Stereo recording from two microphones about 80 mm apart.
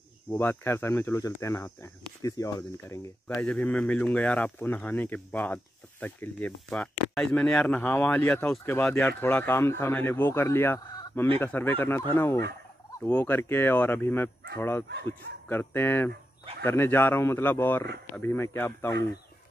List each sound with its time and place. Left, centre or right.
0.3 s speech: left
3.3 s speech: left